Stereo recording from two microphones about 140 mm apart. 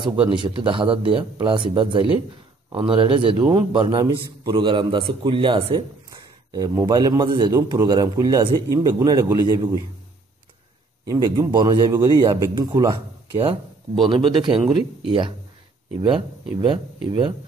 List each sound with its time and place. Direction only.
0.0 s a man's voice: 35° right (ahead or behind)
6.0 s a man's voice: 25° right (ahead or behind)
11.1 s a man's voice: 30° right (ahead or behind)
16.6 s speech: 35° right (ahead or behind)